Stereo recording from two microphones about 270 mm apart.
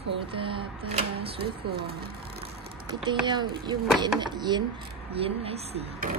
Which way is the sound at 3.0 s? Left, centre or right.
Centre.